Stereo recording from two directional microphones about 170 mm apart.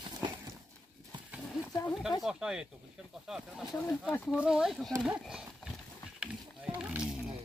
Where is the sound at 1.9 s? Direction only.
Centre (ahead or behind).